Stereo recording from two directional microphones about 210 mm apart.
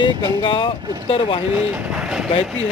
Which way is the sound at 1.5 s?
10° right (ahead or behind).